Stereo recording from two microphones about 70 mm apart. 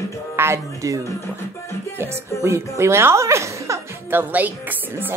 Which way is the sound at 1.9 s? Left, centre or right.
Right.